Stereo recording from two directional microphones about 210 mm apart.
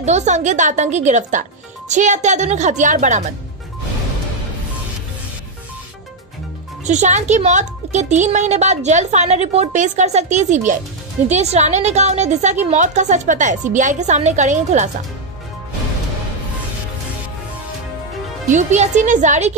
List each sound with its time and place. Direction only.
0.0 s speech: 35° right (ahead or behind)
6.9 s speech: 35° right (ahead or behind)
18.5 s speech: 35° right (ahead or behind)